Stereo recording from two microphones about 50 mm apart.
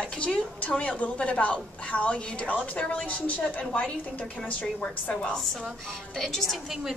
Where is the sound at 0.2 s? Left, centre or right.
Left.